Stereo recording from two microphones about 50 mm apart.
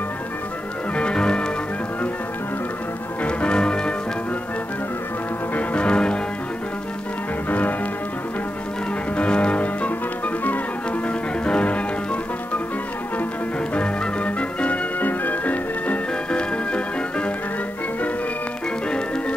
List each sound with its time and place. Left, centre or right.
0.9 s music: centre
3.2 s music: left
5.5 s music: left
7.4 s music: left
9.1 s music: left
13.7 s music: left
16.3 s music: left
18.9 s music: left